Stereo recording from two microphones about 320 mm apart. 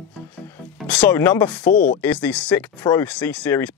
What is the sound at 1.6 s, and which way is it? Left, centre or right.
Speech, left.